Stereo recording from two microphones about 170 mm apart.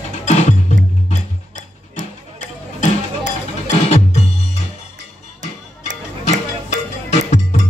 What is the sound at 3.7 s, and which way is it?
Music, 40° left (ahead or behind).